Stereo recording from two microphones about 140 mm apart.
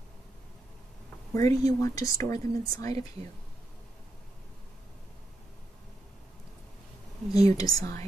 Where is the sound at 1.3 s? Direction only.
25° left (ahead or behind).